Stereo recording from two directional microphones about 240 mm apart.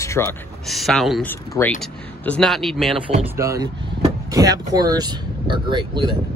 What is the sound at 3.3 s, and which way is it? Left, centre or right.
Speech, centre.